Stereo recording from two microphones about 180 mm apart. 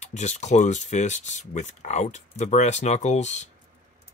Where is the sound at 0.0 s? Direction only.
40° left (ahead or behind).